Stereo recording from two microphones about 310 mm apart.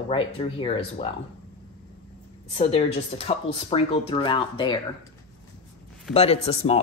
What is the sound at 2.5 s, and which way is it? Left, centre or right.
Speech, centre.